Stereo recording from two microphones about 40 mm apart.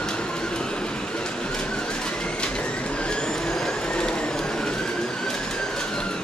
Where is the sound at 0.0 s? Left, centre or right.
Left.